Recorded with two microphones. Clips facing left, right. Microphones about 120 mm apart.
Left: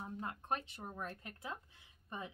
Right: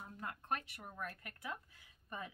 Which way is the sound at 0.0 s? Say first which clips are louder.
Left 3 dB; 25° left (ahead or behind).